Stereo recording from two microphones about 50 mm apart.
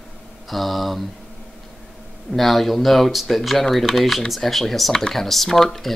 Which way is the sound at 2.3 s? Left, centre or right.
Centre.